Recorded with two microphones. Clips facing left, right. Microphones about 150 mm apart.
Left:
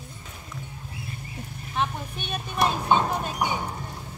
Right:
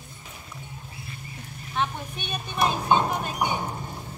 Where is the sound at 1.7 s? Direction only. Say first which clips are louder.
Even; centre (ahead or behind).